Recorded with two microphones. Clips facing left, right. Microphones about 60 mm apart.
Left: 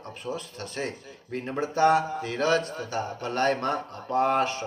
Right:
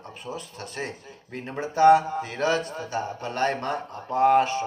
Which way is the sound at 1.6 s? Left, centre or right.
Centre.